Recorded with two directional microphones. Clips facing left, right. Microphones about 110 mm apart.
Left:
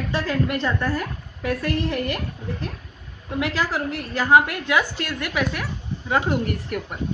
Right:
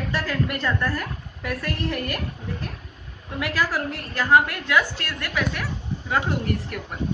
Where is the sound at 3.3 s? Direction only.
25° left (ahead or behind); by 6.2 s 5° left (ahead or behind).